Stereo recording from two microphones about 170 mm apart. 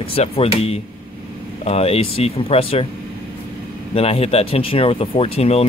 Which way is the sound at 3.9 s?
35° left (ahead or behind).